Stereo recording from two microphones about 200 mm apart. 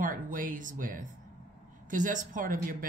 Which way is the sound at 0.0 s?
40° right (ahead or behind).